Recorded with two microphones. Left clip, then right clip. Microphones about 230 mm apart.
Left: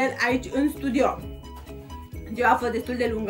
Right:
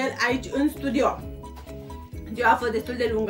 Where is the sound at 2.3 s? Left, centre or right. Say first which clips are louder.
Even; centre.